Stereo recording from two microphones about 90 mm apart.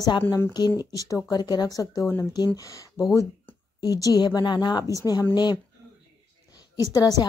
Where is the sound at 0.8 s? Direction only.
40° left (ahead or behind).